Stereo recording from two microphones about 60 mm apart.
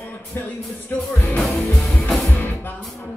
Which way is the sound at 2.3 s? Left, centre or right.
Left.